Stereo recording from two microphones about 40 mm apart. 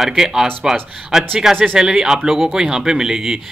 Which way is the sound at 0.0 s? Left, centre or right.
Centre.